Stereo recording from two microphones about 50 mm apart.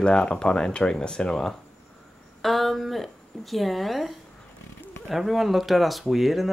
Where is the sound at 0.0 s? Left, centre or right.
Centre.